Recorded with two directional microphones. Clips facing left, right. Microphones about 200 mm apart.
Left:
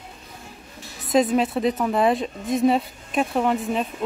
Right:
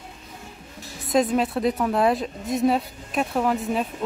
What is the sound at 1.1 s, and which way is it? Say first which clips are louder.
Speech: left 2 dB; centre (ahead or behind).